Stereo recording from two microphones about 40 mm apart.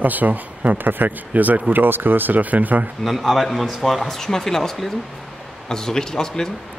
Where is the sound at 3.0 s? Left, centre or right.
Centre.